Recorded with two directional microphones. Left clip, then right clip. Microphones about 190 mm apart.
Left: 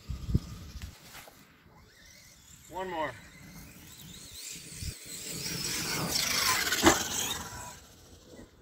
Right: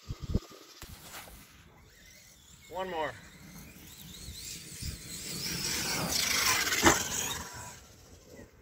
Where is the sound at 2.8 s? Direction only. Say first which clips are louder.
Even; 45° right (ahead or behind).